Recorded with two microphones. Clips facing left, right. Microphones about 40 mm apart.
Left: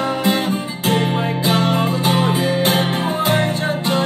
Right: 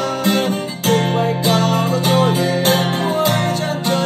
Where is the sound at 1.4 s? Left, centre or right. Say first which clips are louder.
Left 2 dB; left.